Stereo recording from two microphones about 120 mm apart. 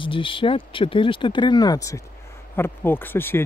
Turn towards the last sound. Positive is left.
turn(degrees=15)  # may be behind; listen again after turning